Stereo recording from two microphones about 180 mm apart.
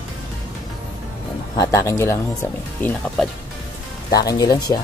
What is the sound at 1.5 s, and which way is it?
Speech, 15° left (ahead or behind).